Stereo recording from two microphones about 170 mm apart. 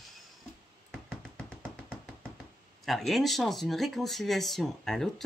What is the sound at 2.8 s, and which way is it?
Speech, centre (ahead or behind).